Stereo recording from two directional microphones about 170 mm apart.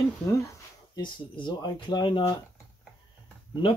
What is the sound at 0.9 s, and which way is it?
Speech, 25° left (ahead or behind).